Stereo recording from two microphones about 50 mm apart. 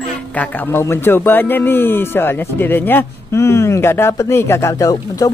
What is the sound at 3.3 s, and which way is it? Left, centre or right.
Speech, left.